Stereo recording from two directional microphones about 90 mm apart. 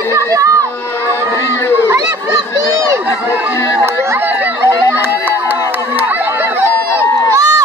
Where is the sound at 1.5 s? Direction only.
30° left (ahead or behind).